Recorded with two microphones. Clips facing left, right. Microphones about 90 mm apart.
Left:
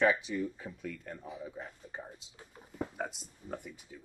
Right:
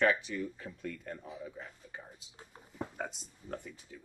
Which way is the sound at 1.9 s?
30° left (ahead or behind).